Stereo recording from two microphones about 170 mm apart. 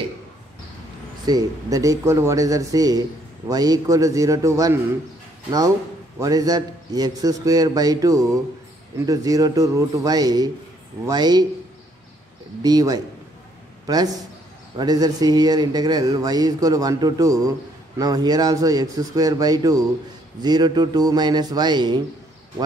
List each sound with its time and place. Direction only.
1.2 s speech: 20° right (ahead or behind)
6.1 s speech: 20° right (ahead or behind)
12.6 s speech: 20° right (ahead or behind)
14.8 s speech: 20° right (ahead or behind)